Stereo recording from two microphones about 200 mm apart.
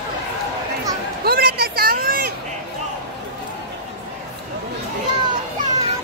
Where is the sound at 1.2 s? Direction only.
50° right (ahead or behind).